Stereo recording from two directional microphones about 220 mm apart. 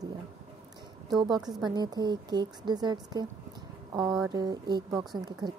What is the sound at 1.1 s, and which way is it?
A woman's voice, 20° right (ahead or behind).